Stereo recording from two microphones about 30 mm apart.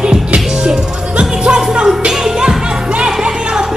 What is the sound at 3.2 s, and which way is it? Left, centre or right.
Music, right.